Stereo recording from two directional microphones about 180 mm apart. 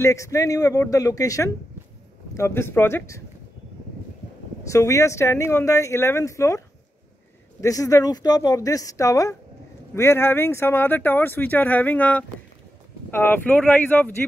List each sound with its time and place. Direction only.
0.0 s speech: 15° left (ahead or behind)
4.6 s speech: 15° left (ahead or behind)
7.6 s speech: 20° left (ahead or behind)